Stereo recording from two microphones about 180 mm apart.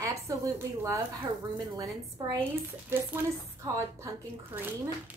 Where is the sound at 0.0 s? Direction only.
15° right (ahead or behind).